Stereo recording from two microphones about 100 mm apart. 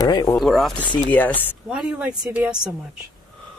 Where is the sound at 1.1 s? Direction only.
15° left (ahead or behind).